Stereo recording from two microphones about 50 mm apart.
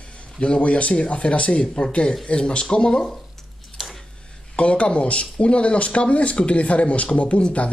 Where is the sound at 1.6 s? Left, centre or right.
Centre.